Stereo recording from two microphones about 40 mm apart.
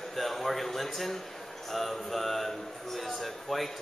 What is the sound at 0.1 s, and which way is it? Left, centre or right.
A man's voice, centre.